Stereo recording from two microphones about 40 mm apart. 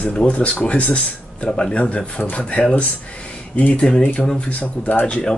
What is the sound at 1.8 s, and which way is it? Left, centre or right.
Speech, left.